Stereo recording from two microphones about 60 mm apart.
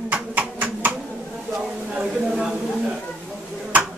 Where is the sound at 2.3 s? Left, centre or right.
Centre.